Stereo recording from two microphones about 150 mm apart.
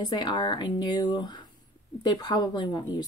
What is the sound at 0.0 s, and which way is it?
Speech, 25° left (ahead or behind).